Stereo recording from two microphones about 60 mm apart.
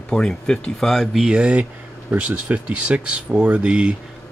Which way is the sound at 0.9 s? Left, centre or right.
Centre.